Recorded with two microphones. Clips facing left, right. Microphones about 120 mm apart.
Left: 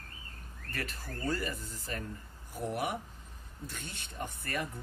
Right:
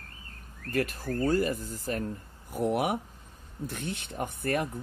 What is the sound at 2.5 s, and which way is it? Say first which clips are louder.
Speech: right 7 dB; 60° right (ahead or behind).